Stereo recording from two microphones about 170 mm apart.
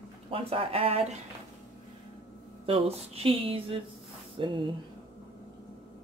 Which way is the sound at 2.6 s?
35° right (ahead or behind).